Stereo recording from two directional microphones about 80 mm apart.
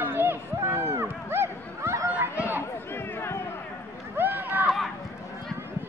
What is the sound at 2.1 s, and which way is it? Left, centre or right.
Chatter, right.